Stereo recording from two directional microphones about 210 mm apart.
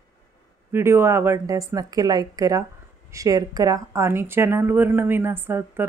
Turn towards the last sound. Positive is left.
turn(degrees=-10)  # may be behind; listen again after turning